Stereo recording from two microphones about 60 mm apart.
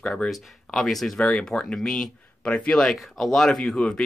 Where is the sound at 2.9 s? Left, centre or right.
Centre.